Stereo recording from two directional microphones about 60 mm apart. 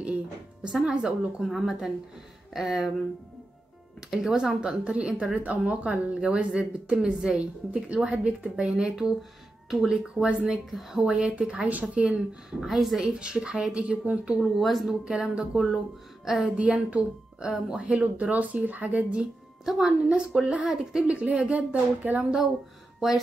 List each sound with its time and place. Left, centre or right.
0.7 s a woman's voice: centre
4.1 s a woman's voice: centre
4.5 s a woman's voice: centre
10.1 s a woman's voice: centre
10.7 s speech: centre
11.1 s speech: centre
12.5 s a woman's voice: centre
14.4 s speech: centre
15.0 s a woman's voice: centre
19.6 s a woman's voice: centre
21.1 s speech: right
22.9 s speech: centre